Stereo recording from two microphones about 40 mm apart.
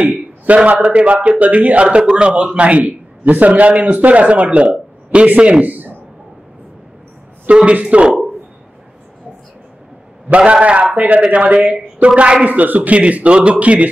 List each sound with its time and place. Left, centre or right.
0.0 s a sound: right
0.7 s a man's voice: right
0.9 s a man's voice: right
7.4 s a man's voice: right
10.2 s a man's voice: right
12.4 s a man's voice: right
13.0 s a man's voice: right